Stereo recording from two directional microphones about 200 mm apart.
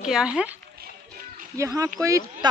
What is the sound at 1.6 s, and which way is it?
Speech, 15° right (ahead or behind).